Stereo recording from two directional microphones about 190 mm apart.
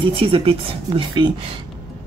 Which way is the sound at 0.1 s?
30° right (ahead or behind).